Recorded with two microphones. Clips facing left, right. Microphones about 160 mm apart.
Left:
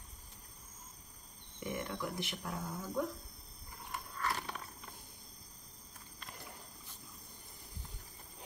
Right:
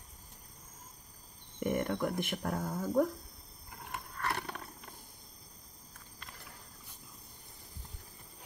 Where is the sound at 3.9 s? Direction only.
60° right (ahead or behind).